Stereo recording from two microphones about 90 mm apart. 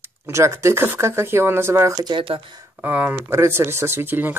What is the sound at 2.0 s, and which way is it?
Speech, 70° right (ahead or behind).